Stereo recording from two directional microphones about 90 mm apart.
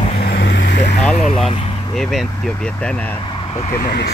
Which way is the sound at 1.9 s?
5° left (ahead or behind).